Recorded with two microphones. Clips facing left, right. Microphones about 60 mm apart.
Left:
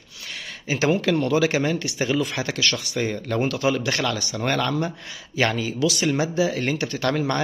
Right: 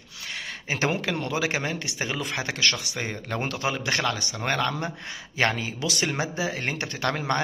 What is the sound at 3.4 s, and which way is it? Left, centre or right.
A man's voice, right.